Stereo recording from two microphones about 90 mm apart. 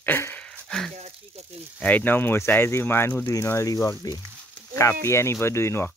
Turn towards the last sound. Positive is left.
turn(degrees=30)  # may be behind; listen again after turning